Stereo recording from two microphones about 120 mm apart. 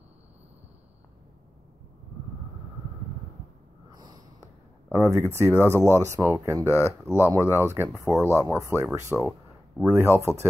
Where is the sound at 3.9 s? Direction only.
35° right (ahead or behind).